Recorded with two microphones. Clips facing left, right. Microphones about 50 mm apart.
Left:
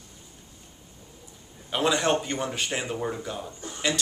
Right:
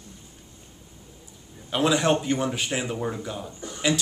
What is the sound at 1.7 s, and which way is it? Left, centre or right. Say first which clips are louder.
A man's voice: right 2 dB; centre.